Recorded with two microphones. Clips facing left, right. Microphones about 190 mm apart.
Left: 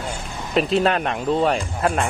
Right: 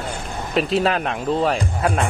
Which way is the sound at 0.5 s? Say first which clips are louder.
Left 1 dB; centre (ahead or behind).